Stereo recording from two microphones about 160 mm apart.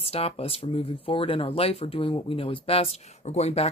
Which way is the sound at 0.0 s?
40° left (ahead or behind).